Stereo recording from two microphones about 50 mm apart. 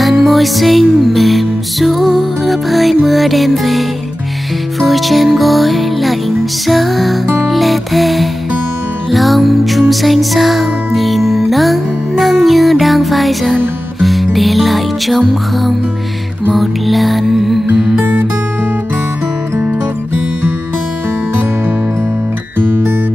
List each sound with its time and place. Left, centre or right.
0.0 s music: centre
17.6 s music: right
22.6 s music: right